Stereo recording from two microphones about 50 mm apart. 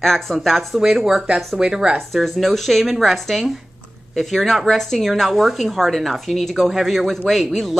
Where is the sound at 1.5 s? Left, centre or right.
Centre.